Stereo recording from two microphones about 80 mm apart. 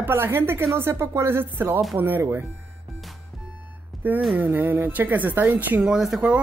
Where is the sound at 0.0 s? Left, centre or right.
Right.